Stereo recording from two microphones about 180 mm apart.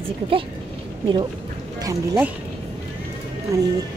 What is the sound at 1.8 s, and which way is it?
Speech, 15° right (ahead or behind).